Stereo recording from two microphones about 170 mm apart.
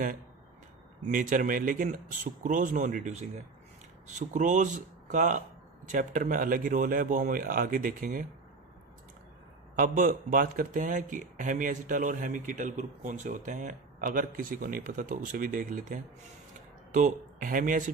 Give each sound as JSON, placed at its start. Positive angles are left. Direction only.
{"t": 1.0, "sound": "speech", "side_deg": -50}
{"t": 9.8, "sound": "speech", "side_deg": -50}